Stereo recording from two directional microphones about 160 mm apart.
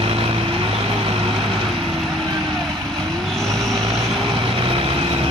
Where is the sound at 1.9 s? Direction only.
Centre (ahead or behind).